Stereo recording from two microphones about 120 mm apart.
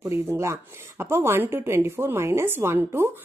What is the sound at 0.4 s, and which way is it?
Speech, 20° right (ahead or behind).